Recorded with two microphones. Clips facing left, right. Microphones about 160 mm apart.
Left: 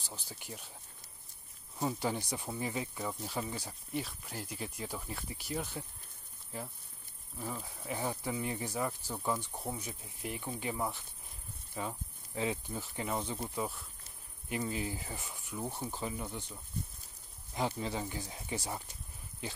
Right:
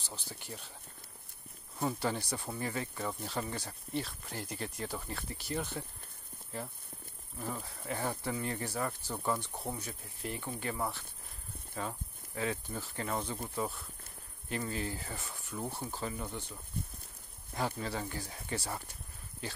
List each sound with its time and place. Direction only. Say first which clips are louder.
0.1 s speech: right 1 dB; 10° left (ahead or behind)
1.8 s speech: even; 10° left (ahead or behind)
7.3 s speech: right 1 dB; centre (ahead or behind)
12.4 s speech: left 1 dB; 15° left (ahead or behind)
16.8 s insect: even; 60° right (ahead or behind)
17.6 s speech: left 1 dB; 20° left (ahead or behind)